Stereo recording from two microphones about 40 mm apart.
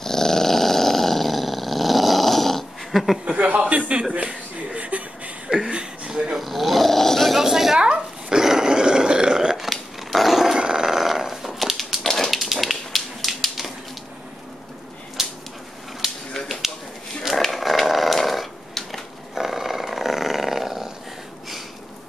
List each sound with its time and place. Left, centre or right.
0.0 s growling: centre
3.3 s speech: right
4.7 s chuckle: right
5.7 s a sound: right
6.3 s dog: centre
7.3 s a sound: centre
7.8 s roar: right
9.6 s dog: centre
10.6 s dog: centre
12.4 s a sound: centre
15.2 s a sound: centre
17.4 s dog: centre
19.3 s roar: centre